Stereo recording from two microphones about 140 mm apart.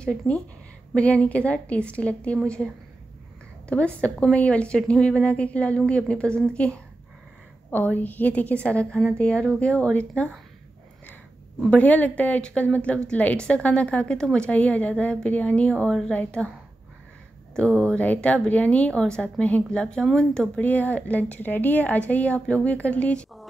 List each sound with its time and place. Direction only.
0.3 s a woman's voice: 10° left (ahead or behind)
11.7 s a woman's voice: 10° left (ahead or behind)
17.6 s a woman's voice: 10° left (ahead or behind)